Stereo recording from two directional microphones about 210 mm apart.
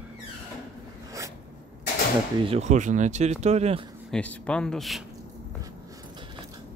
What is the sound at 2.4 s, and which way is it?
Speech, 30° right (ahead or behind).